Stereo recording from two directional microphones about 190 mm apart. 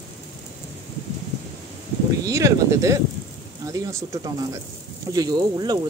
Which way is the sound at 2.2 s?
15° right (ahead or behind).